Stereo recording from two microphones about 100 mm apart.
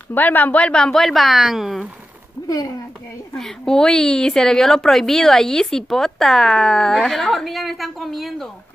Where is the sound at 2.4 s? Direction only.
40° left (ahead or behind).